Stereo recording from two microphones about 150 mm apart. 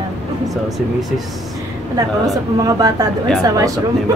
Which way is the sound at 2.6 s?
25° right (ahead or behind).